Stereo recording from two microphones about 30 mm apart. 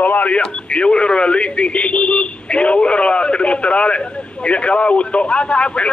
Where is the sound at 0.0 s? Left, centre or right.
Left.